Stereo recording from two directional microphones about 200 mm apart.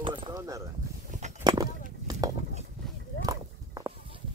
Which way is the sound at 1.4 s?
20° right (ahead or behind).